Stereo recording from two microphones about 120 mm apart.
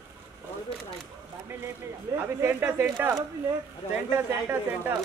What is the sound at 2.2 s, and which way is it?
Speech, 15° right (ahead or behind).